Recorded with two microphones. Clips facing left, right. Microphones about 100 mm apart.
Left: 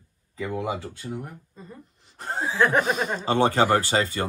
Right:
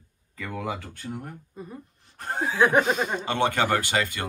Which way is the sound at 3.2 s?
35° left (ahead or behind).